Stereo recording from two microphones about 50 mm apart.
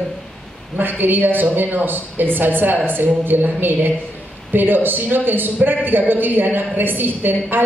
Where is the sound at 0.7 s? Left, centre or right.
Right.